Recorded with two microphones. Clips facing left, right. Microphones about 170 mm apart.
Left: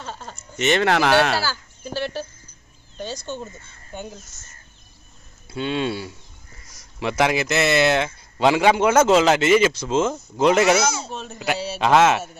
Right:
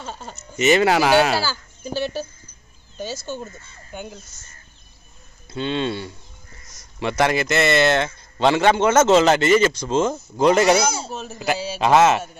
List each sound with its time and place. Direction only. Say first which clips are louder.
0.0 s speech: right 1 dB; 10° right (ahead or behind)
0.6 s a man's voice: right 3 dB; 5° right (ahead or behind)
5.5 s a man's voice: even; 5° left (ahead or behind)